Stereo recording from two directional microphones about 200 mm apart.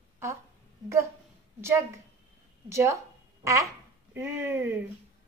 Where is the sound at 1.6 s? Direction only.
15° right (ahead or behind).